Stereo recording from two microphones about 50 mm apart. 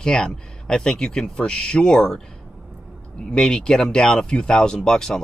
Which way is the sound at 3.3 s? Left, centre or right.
Centre.